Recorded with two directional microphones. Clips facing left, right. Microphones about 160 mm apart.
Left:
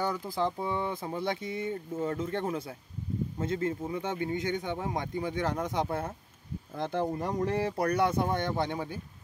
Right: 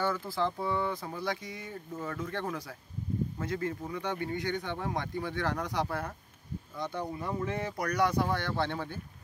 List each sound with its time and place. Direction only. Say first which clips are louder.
0.0 s a man's voice: left 1 dB; 15° left (ahead or behind)
6.8 s a man's voice: left 5 dB; 50° left (ahead or behind); by 9.0 s 15° left (ahead or behind)